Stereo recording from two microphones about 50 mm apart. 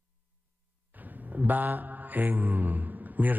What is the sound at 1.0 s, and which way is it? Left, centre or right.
Mantra, right.